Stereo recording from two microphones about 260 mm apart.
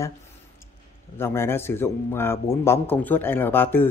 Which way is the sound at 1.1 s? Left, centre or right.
Centre.